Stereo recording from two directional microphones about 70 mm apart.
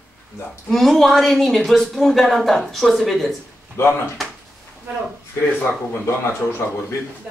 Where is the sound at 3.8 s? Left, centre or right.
Left.